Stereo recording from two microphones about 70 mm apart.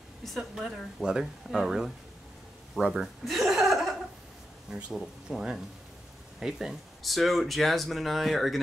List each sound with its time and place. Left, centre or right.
0.2 s speech: centre
4.6 s speech: centre
4.9 s speech: centre
6.4 s speech: centre